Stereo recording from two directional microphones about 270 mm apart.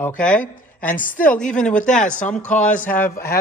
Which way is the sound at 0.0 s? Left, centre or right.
Centre.